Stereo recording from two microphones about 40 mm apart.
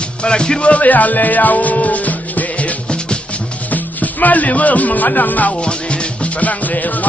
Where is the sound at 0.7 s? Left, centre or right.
Left.